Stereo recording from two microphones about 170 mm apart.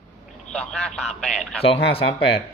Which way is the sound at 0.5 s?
5° left (ahead or behind).